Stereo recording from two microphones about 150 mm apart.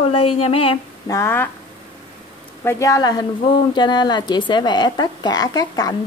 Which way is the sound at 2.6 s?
20° left (ahead or behind).